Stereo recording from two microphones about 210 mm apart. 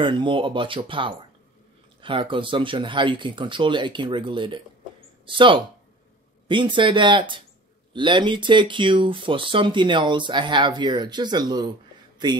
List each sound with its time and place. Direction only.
0.0 s speech: 25° right (ahead or behind)